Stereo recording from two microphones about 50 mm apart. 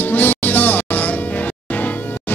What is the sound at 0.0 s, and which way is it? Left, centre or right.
Music, left.